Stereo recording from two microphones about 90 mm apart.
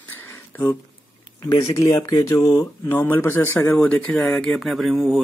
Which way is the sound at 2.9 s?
25° left (ahead or behind).